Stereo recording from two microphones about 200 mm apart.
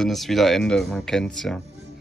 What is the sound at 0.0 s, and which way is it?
Speech, centre (ahead or behind).